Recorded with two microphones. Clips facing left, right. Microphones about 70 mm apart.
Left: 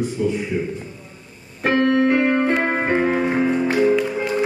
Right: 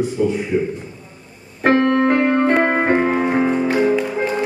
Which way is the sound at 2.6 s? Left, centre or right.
Right.